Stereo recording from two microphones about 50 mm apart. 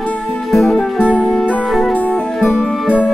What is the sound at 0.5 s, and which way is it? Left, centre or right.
Music, centre.